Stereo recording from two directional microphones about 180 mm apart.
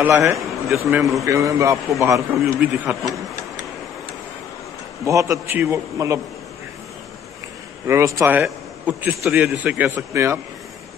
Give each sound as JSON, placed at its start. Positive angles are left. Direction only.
{"t": 0.0, "sound": "a man's voice", "side_deg": -15}
{"t": 5.0, "sound": "a man's voice", "side_deg": -15}
{"t": 7.8, "sound": "a man's voice", "side_deg": -15}